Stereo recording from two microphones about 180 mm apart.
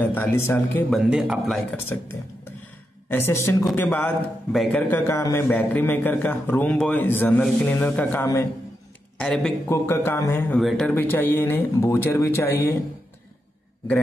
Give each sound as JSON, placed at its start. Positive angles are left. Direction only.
{"t": 0.0, "sound": "a man's voice", "side_deg": 10}
{"t": 0.8, "sound": "speech", "side_deg": 0}
{"t": 1.9, "sound": "a man's voice", "side_deg": 15}
{"t": 9.7, "sound": "a man's voice", "side_deg": 15}
{"t": 10.6, "sound": "a man's voice", "side_deg": 0}